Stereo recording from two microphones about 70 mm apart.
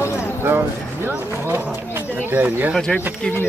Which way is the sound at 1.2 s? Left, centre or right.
Right.